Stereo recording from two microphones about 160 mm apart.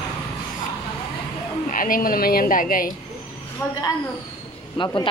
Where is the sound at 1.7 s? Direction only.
60° left (ahead or behind).